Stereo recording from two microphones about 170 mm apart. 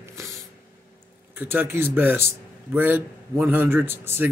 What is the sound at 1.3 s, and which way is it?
A man's voice, 15° right (ahead or behind).